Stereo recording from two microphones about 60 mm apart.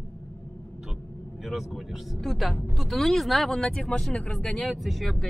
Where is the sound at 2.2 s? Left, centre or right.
Centre.